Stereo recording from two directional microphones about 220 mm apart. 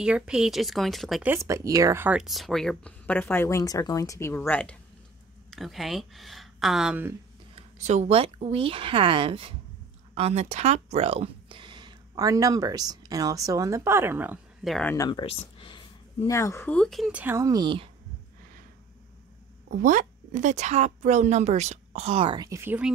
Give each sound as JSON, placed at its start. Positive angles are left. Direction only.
{"t": 0.0, "sound": "speech", "side_deg": -5}
{"t": 7.5, "sound": "speech", "side_deg": -30}
{"t": 15.0, "sound": "speech", "side_deg": 20}
{"t": 19.7, "sound": "a woman's voice", "side_deg": -35}